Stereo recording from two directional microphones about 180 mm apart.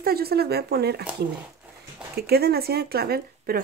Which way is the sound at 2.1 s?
60° right (ahead or behind).